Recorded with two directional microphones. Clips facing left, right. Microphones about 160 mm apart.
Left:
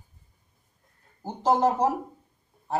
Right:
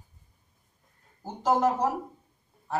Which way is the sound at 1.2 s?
25° left (ahead or behind).